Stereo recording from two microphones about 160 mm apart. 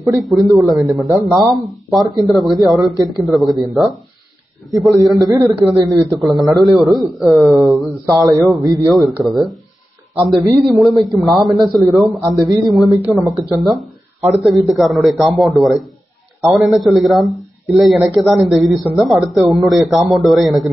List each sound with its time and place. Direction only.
0.0 s a man's voice: centre (ahead or behind)